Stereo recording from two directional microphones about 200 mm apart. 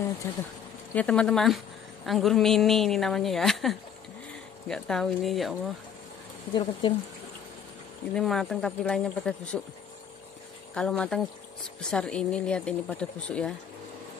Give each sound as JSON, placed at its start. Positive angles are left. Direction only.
{"t": 0.2, "sound": "speech", "side_deg": 15}
{"t": 6.5, "sound": "speech", "side_deg": 25}
{"t": 8.1, "sound": "speech", "side_deg": 0}
{"t": 10.7, "sound": "speech", "side_deg": 5}